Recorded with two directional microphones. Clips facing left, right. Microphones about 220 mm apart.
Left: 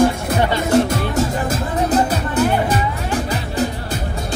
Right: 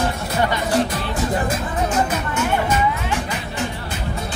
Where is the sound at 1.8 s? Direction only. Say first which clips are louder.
Left 5 dB; 35° left (ahead or behind).